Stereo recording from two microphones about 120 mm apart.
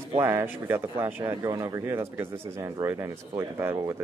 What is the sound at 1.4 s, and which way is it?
Speech, 30° right (ahead or behind).